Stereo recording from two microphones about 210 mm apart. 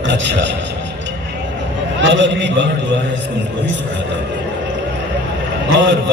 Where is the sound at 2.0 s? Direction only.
60° right (ahead or behind).